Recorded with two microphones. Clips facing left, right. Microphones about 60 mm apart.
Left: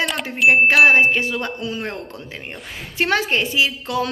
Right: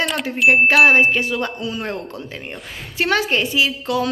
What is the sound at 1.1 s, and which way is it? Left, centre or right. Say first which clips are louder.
A woman's voice: right 1 dB; left.